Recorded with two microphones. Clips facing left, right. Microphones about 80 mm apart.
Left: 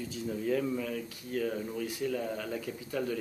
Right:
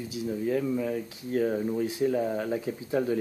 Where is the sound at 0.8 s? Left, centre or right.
Right.